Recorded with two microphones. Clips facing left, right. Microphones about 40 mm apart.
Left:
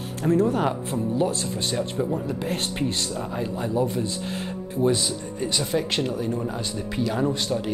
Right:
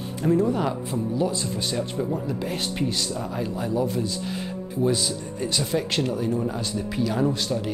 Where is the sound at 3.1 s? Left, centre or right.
Centre.